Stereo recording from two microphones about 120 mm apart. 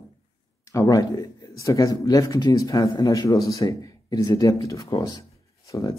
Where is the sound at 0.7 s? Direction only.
30° left (ahead or behind).